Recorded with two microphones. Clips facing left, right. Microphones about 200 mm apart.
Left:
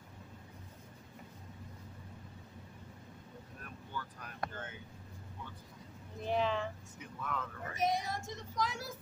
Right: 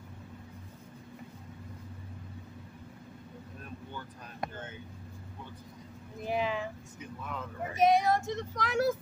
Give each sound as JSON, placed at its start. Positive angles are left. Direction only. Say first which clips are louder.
{"t": 3.9, "sound": "basketball bounce", "louder": "right 1 dB", "side_deg": -20}
{"t": 6.2, "sound": "a sound", "louder": "right 1 dB", "side_deg": -10}
{"t": 7.2, "sound": "vehicle", "louder": "right 2 dB", "side_deg": -20}
{"t": 7.8, "sound": "child singing", "louder": "right 10 dB", "side_deg": -80}